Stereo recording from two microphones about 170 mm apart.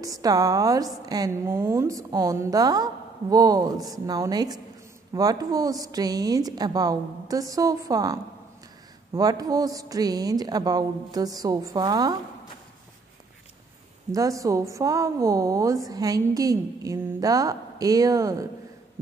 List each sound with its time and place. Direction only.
0.0 s a woman's voice: 20° right (ahead or behind)
14.1 s a woman's voice: 20° right (ahead or behind)